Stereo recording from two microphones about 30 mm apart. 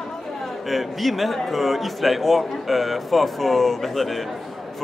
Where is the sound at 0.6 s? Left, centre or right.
Centre.